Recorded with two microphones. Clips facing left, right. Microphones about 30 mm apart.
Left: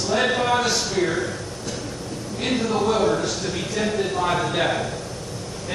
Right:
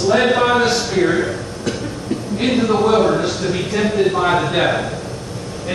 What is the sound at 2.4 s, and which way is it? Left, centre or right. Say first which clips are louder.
A man's voice: right 6 dB; right.